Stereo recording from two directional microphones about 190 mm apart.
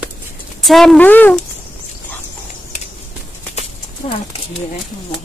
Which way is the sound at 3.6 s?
30° left (ahead or behind).